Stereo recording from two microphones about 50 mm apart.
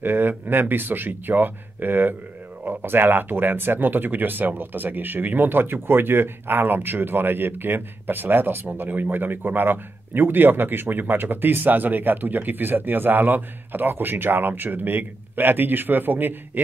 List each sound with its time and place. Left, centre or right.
0.0 s speech: right